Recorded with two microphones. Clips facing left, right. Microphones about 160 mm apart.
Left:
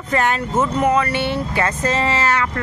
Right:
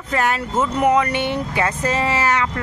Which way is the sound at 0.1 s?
5° right (ahead or behind).